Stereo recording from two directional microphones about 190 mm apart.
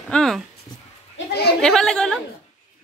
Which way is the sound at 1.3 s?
60° left (ahead or behind).